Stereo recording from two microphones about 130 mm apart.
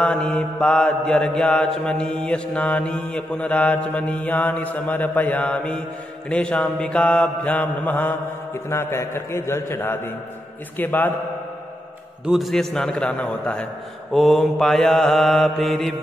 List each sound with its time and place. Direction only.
0.0 s mantra: 5° left (ahead or behind)
8.6 s a man's voice: 20° left (ahead or behind)
10.8 s mantra: 15° left (ahead or behind)
12.3 s mantra: centre (ahead or behind)